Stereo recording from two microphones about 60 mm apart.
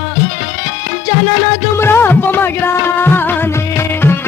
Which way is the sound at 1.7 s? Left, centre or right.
Left.